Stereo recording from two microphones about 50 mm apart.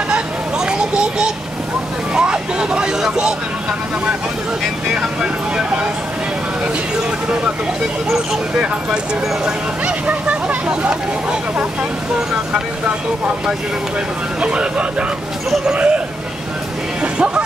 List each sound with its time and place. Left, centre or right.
0.7 s a sound: centre
2.1 s vehicle: centre
3.0 s speech: centre
9.8 s speech: right
14.4 s speech: right
17.0 s music: right